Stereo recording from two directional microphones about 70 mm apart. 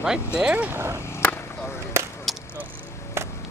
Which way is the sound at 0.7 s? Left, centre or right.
Right.